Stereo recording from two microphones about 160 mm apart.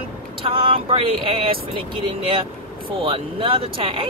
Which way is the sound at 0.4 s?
35° right (ahead or behind).